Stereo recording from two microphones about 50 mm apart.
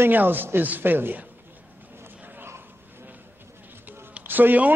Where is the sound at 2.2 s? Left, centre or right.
Right.